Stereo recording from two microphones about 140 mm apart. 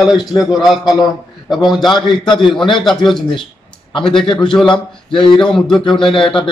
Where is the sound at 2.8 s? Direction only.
Centre (ahead or behind).